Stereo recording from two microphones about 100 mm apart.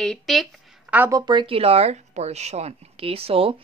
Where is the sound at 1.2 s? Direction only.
50° right (ahead or behind).